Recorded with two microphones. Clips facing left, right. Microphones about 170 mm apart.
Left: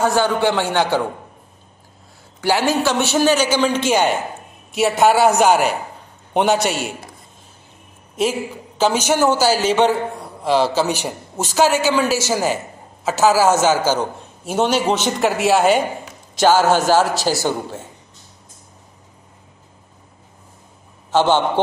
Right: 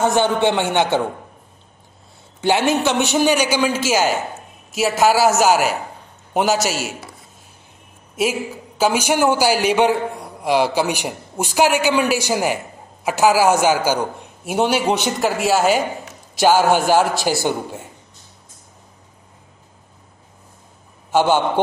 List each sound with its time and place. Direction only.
0.0 s a man's voice: 20° right (ahead or behind)
2.4 s a man's voice: 20° right (ahead or behind); by 7.0 s 5° right (ahead or behind)
8.2 s a man's voice: 10° right (ahead or behind)
15.1 s a man's voice: centre (ahead or behind)
16.3 s a man's voice: 10° right (ahead or behind)
21.1 s a man's voice: 10° right (ahead or behind)